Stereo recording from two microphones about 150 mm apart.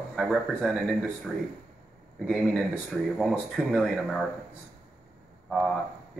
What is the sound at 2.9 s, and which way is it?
Speech, centre (ahead or behind).